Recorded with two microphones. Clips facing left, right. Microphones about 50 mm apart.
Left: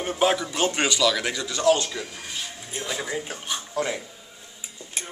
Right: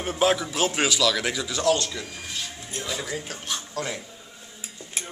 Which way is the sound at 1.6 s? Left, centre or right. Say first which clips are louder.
Left 3 dB; centre.